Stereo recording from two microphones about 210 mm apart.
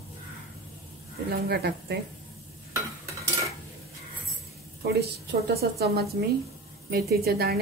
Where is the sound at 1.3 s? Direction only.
50° right (ahead or behind).